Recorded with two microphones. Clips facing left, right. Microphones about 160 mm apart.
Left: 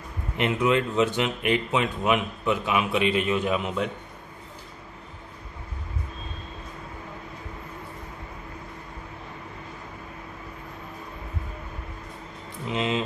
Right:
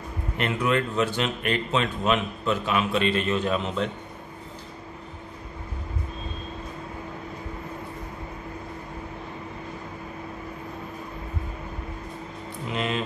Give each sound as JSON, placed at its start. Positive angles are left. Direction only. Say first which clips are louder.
{"t": 0.4, "sound": "speech", "louder": "left 2 dB", "side_deg": 15}
{"t": 12.6, "sound": "music", "louder": "left 2 dB", "side_deg": 20}